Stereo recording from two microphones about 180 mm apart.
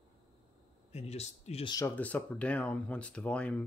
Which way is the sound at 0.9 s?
35° left (ahead or behind).